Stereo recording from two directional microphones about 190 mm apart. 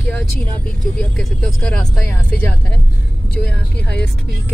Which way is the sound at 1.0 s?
5° left (ahead or behind).